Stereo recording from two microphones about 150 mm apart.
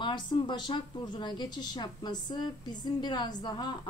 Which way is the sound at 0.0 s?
30° left (ahead or behind).